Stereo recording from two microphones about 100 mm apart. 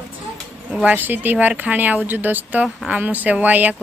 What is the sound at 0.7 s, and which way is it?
A woman's voice, 15° right (ahead or behind).